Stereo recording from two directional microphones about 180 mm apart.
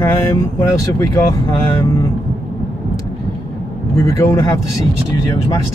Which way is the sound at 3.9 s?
15° left (ahead or behind).